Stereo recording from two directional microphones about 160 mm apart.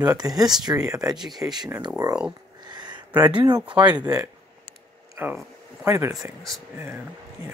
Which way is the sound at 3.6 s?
5° right (ahead or behind).